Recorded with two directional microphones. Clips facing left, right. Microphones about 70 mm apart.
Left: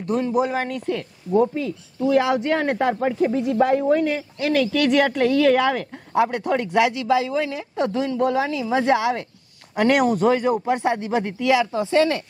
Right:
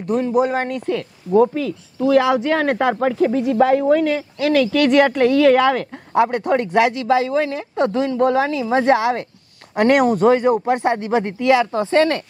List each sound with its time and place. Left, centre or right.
0.3 s speech: right
0.9 s speech: right
6.2 s speech: right
11.2 s speech: right